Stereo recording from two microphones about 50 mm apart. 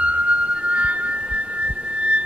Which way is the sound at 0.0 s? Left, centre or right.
Right.